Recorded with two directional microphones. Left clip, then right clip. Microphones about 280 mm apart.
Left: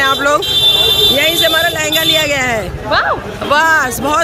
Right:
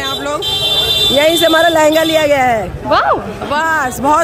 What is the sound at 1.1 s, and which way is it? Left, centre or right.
Speech, centre.